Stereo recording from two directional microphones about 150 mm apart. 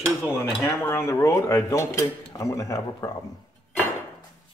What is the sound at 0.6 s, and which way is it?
Speech, 15° left (ahead or behind).